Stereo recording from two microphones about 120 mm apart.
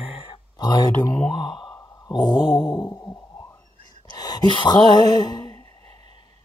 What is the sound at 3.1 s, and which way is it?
Stomach rumble, 20° left (ahead or behind).